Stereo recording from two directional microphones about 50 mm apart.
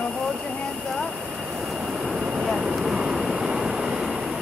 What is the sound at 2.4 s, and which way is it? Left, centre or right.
Vehicle, centre.